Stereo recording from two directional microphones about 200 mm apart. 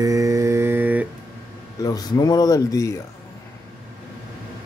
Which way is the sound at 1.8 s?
20° left (ahead or behind).